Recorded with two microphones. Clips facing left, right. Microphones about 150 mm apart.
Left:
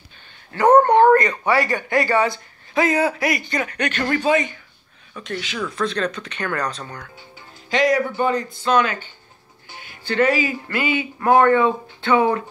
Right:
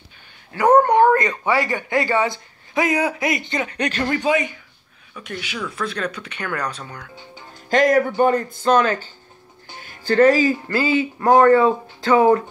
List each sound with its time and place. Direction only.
0.5 s dog: 10° right (ahead or behind)
1.5 s a man's voice: 20° right (ahead or behind)
4.0 s speech: 15° right (ahead or behind)
7.7 s speech: 50° right (ahead or behind)